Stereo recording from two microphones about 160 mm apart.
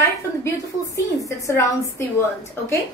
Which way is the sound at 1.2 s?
20° left (ahead or behind).